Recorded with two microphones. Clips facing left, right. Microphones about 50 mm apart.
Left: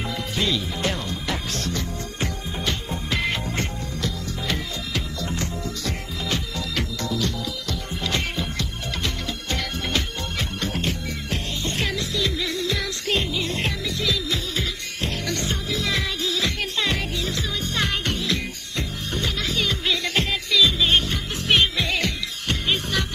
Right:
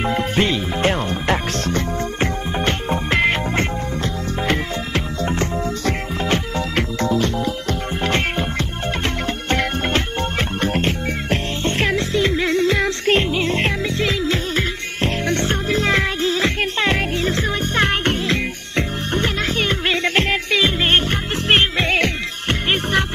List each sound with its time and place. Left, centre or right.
0.0 s music: right